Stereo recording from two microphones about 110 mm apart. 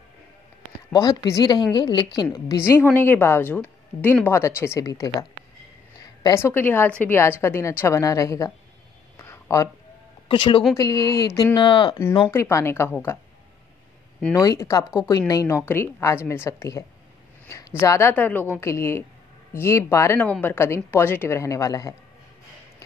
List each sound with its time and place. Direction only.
0.9 s a woman's voice: 30° left (ahead or behind)
1.4 s a woman's voice: 40° left (ahead or behind)
2.3 s a woman's voice: 30° left (ahead or behind)
6.3 s a woman's voice: 20° left (ahead or behind)
9.1 s a sound: 25° left (ahead or behind)
10.2 s speech: 50° left (ahead or behind)
10.8 s speech: 30° left (ahead or behind)
11.5 s a woman's voice: 50° left (ahead or behind)
12.3 s a woman's voice: 25° left (ahead or behind)
14.3 s speech: 30° left (ahead or behind)
15.6 s a woman's voice: 20° left (ahead or behind)
20.2 s a woman's voice: 15° left (ahead or behind); by 21.9 s 30° left (ahead or behind)